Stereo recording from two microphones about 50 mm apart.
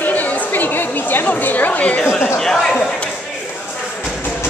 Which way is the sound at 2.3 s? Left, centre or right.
Centre.